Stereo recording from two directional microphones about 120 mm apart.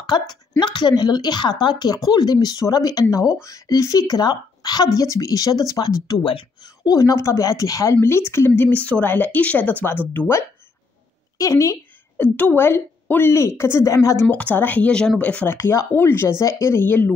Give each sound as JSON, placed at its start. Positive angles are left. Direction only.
{"t": 0.1, "sound": "a woman's voice", "side_deg": 35}
{"t": 11.3, "sound": "a woman's voice", "side_deg": 30}
{"t": 12.2, "sound": "a woman's voice", "side_deg": 15}